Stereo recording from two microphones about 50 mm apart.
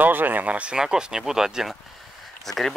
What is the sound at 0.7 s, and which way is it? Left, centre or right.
Speech, centre.